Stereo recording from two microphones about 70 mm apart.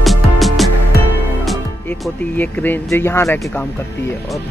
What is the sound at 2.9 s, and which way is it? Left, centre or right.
Speech, left.